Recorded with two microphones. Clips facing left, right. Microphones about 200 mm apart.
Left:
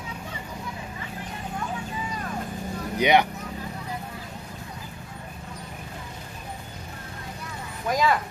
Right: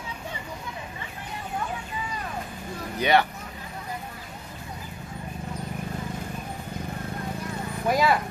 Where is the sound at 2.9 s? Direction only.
15° left (ahead or behind).